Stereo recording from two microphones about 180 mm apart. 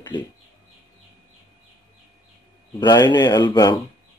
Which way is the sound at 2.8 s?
25° left (ahead or behind).